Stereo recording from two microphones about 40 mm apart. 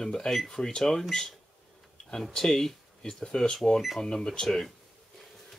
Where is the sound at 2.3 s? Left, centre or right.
Centre.